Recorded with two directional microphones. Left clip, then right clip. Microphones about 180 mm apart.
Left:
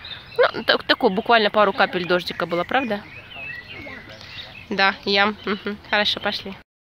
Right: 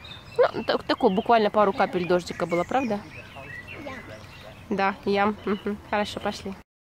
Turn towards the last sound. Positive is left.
turn(degrees=-5)  # may be behind; listen again after turning